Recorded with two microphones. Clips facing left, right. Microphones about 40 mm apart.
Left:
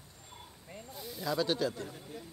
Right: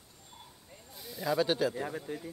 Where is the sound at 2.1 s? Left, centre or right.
Right.